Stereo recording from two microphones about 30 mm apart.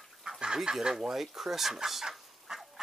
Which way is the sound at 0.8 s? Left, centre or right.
Right.